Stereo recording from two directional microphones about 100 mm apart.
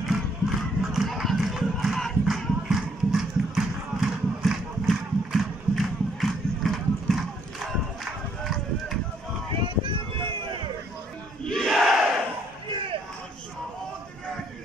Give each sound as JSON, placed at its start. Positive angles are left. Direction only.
{"t": 0.1, "sound": "crowd", "side_deg": 0}
{"t": 9.6, "sound": "a sound", "side_deg": -55}
{"t": 11.4, "sound": "battle cry", "side_deg": 0}